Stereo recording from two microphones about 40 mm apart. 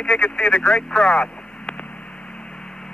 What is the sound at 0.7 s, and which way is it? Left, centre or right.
Speech, centre.